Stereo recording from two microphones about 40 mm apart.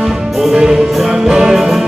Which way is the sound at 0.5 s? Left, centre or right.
Centre.